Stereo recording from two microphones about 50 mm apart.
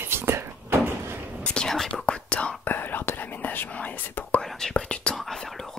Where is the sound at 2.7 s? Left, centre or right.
Left.